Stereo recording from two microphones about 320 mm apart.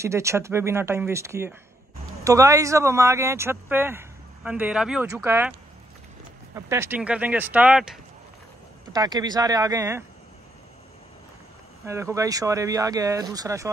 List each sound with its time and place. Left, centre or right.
0.0 s speech: centre
6.5 s speech: centre
11.8 s speech: centre